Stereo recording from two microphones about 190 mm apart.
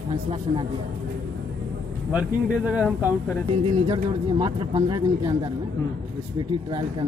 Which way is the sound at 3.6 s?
25° right (ahead or behind).